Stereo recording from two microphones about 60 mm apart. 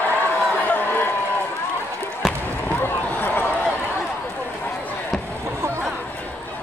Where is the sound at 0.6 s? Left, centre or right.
Left.